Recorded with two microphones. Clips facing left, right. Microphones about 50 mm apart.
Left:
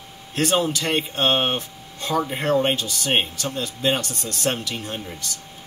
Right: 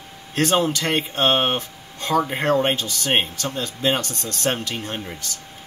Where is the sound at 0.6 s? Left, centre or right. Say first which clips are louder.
Right 1 dB; right.